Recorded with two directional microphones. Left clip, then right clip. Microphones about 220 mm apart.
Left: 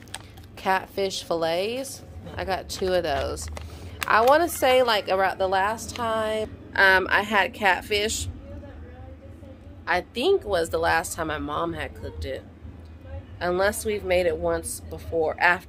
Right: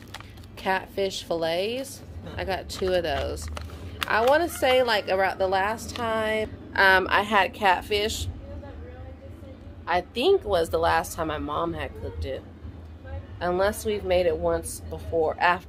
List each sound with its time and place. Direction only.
0.1 s a woman's voice: 15° left (ahead or behind)
9.8 s a woman's voice: 10° left (ahead or behind)